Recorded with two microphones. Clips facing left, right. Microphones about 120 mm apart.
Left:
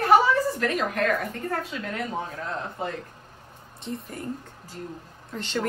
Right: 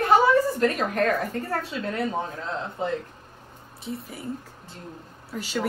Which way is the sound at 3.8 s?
Centre (ahead or behind).